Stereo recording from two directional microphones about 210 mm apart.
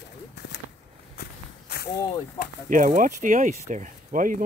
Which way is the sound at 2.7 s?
40° right (ahead or behind).